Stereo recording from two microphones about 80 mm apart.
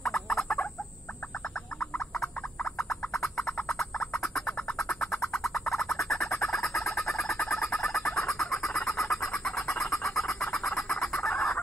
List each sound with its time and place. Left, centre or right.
0.0 s turkey: centre
2.9 s frog: centre
3.6 s a sound: centre
6.0 s fowl: centre
7.2 s bird: centre
8.1 s bird: left
8.4 s chicken: centre